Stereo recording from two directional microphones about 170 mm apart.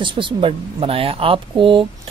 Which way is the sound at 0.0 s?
30° right (ahead or behind).